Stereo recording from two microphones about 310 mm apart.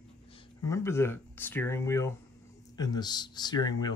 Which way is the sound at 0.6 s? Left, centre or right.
Centre.